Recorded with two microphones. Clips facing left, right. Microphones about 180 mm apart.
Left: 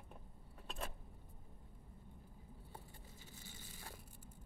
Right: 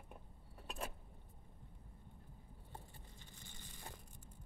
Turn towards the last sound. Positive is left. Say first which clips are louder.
# even
turn(degrees=5)  # may be behind; listen again after turning